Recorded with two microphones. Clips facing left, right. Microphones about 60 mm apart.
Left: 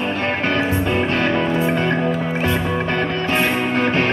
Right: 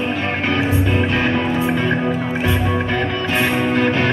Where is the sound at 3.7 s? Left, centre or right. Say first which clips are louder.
Even; left.